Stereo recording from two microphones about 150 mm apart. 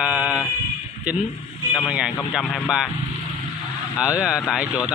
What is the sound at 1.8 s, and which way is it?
Speech, 5° right (ahead or behind).